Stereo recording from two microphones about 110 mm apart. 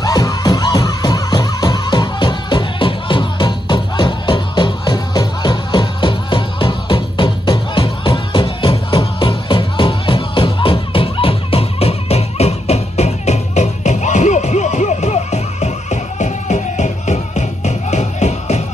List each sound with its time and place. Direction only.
0.0 s music: 35° left (ahead or behind); by 18.6 s 90° left